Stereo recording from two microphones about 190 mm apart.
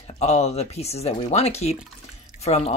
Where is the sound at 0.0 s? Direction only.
35° left (ahead or behind).